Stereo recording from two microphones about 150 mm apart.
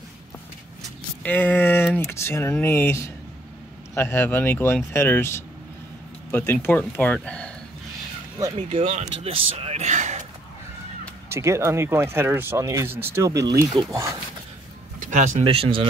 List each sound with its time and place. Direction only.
1.2 s a sound: 15° left (ahead or behind)
2.0 s speech: 15° left (ahead or behind)
8.5 s speech: 45° right (ahead or behind)
11.2 s speech: 20° right (ahead or behind)
15.0 s a sound: 55° right (ahead or behind)
15.4 s speech: 35° right (ahead or behind)